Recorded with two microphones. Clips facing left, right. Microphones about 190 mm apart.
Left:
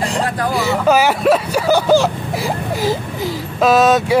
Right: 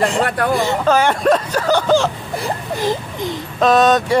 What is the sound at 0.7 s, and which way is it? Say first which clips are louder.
Speech: left 1 dB; 10° left (ahead or behind).